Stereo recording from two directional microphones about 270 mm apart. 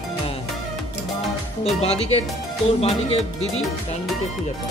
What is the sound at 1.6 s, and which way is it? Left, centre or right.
Speech, left.